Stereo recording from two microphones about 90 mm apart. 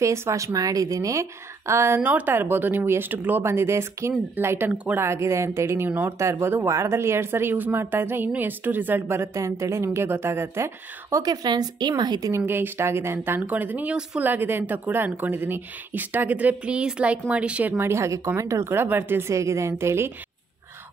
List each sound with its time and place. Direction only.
0.0 s a woman's voice: 35° right (ahead or behind)
2.0 s a woman's voice: 20° right (ahead or behind)
6.4 s a woman's voice: 30° right (ahead or behind)
11.2 s speech: 50° right (ahead or behind)
12.3 s a woman's voice: 25° right (ahead or behind)
17.7 s a woman's voice: 30° right (ahead or behind)